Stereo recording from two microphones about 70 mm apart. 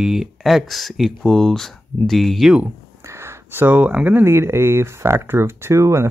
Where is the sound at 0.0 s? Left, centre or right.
Centre.